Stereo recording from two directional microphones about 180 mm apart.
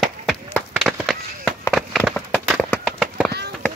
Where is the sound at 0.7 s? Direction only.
Centre (ahead or behind).